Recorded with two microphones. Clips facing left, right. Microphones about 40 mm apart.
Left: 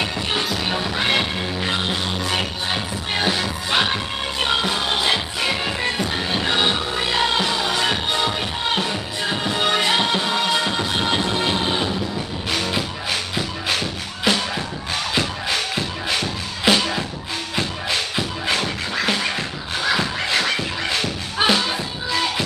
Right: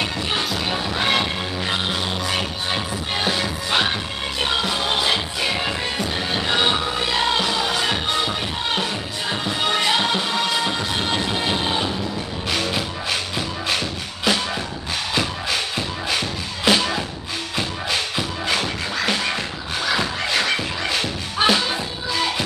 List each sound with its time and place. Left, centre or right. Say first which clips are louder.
0.0 s music: even; centre
11.2 s train: left 1 dB; centre
12.4 s music: even; centre
16.6 s music: even; centre